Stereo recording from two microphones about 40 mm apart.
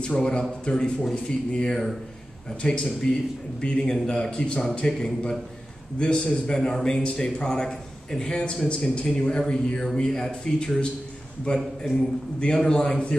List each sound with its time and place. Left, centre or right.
0.0 s a man's voice: left